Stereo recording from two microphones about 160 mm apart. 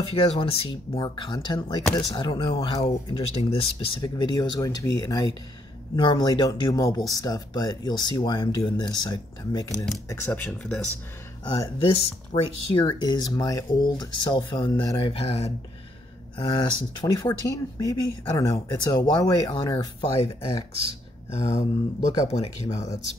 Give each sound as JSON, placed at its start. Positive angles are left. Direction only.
{"t": 0.0, "sound": "speech", "side_deg": 35}
{"t": 10.0, "sound": "speech", "side_deg": 10}
{"t": 11.4, "sound": "speech", "side_deg": 25}
{"t": 11.9, "sound": "speech", "side_deg": 40}
{"t": 12.8, "sound": "speech", "side_deg": 25}
{"t": 16.3, "sound": "speech", "side_deg": 30}
{"t": 21.3, "sound": "speech", "side_deg": 40}
{"t": 22.8, "sound": "speech", "side_deg": 20}